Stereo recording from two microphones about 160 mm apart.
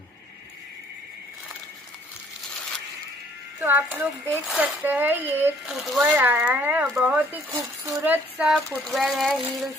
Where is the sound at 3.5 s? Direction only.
10° right (ahead or behind).